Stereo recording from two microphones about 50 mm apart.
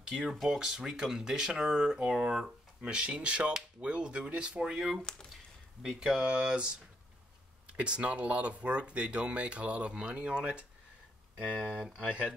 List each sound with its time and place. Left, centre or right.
0.4 s speech: centre